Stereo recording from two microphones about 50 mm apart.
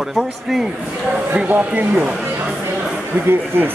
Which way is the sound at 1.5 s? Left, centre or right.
Right.